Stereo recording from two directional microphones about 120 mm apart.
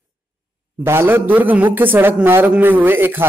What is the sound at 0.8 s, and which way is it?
A man's voice, 20° right (ahead or behind).